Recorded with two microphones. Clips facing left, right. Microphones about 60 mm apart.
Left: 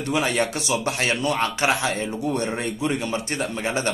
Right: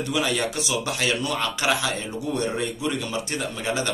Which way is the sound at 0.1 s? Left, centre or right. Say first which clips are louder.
Left 3 dB; left.